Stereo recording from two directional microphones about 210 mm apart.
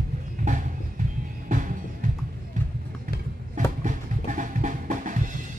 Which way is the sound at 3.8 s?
35° right (ahead or behind).